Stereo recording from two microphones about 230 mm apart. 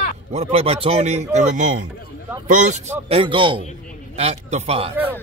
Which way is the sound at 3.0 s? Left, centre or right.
Right.